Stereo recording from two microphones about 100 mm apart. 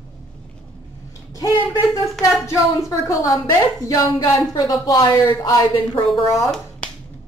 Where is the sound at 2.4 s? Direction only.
30° left (ahead or behind).